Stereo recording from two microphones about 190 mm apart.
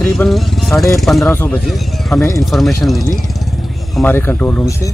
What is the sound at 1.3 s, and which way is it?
Speech, 10° left (ahead or behind).